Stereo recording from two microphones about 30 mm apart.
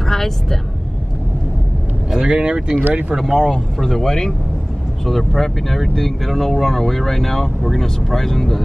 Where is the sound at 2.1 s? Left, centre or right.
Right.